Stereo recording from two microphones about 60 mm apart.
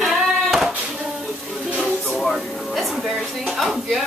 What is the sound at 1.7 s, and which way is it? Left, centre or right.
Music, centre.